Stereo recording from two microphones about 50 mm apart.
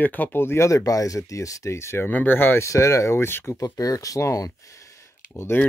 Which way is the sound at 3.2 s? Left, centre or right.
Left.